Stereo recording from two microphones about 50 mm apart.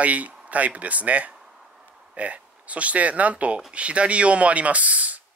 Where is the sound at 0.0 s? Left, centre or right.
Right.